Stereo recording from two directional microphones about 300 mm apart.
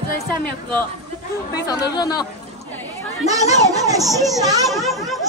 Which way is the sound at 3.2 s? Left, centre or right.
Centre.